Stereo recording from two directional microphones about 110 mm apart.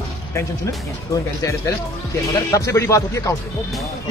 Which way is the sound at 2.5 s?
30° left (ahead or behind).